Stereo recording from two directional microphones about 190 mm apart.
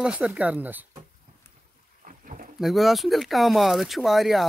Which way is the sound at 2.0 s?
45° right (ahead or behind).